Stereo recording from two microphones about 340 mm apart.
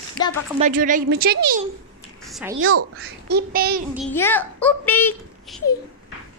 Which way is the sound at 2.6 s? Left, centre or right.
Right.